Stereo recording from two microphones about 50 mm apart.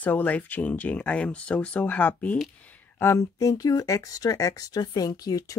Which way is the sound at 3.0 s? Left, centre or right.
Left.